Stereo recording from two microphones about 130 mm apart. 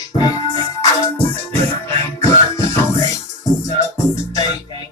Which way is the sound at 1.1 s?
20° left (ahead or behind).